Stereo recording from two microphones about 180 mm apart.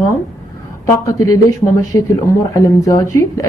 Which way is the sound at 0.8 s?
20° left (ahead or behind).